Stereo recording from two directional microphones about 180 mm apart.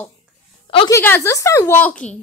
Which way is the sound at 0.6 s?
30° left (ahead or behind).